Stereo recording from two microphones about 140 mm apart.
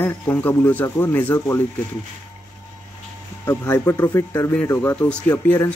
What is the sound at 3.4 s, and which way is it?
Speech, 15° left (ahead or behind).